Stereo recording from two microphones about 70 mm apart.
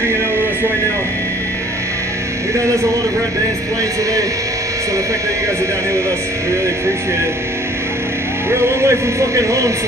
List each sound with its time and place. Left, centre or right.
8.5 s a man's voice: right